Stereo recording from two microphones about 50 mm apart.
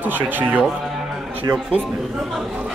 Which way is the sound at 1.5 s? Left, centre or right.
Right.